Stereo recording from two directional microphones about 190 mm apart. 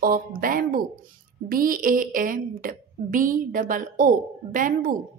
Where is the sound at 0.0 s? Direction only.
50° right (ahead or behind).